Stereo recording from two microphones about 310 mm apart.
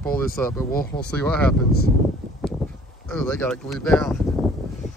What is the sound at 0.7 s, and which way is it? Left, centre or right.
Speech, left.